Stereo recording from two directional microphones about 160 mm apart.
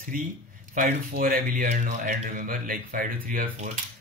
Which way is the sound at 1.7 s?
50° right (ahead or behind).